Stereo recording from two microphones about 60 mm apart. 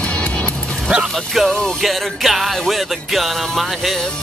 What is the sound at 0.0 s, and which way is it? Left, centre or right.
Music, centre.